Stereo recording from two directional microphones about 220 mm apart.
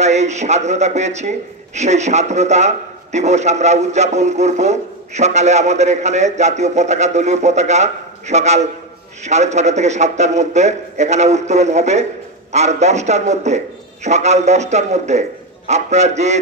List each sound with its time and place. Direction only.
0.0 s a man's voice: 30° right (ahead or behind)